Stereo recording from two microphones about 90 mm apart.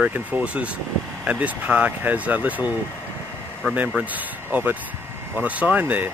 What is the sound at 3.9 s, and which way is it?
Speech, 20° right (ahead or behind).